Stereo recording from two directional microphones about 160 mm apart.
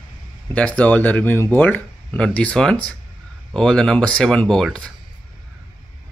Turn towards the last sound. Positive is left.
turn(degrees=5)  # may be behind; listen again after turning